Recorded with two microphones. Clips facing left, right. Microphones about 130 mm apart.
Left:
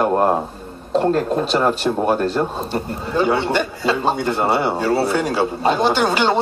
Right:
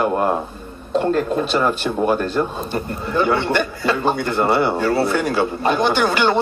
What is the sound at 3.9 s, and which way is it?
Speech, 25° left (ahead or behind).